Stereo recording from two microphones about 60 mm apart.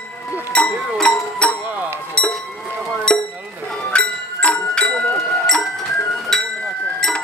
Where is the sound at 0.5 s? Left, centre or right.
Left.